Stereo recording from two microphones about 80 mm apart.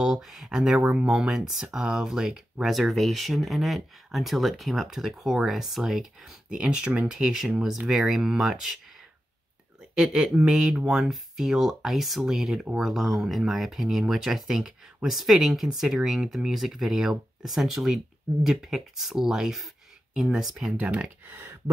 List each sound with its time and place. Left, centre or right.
0.0 s speech: centre
9.8 s speech: centre
20.8 s speech: centre